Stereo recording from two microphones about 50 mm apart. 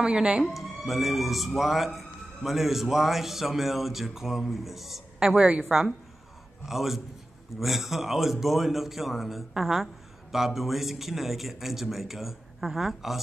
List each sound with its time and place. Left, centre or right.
0.0 s speech: centre
0.5 s a man's voice: centre
5.3 s a woman's voice: right
6.6 s a man's voice: centre